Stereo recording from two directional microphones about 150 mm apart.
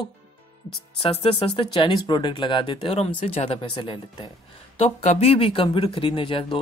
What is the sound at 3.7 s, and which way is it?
Speech, 35° left (ahead or behind).